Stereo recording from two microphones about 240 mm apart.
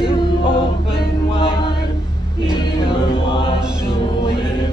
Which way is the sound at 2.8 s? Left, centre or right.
Left.